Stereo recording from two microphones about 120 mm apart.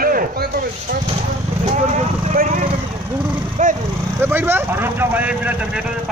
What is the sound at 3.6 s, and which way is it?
Dog, 90° right.